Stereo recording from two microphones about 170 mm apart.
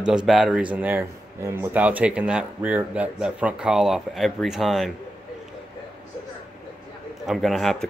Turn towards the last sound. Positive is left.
turn(degrees=0)  # may be behind; listen again after turning